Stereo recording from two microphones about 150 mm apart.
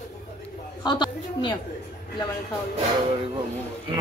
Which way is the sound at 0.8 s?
30° left (ahead or behind).